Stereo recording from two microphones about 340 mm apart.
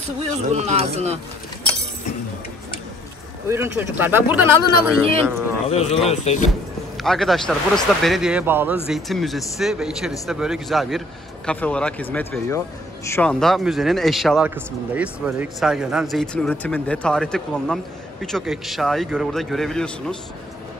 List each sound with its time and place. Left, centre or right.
0.5 s speech: centre
3.4 s speech: centre
5.7 s speech: centre
7.0 s speech: centre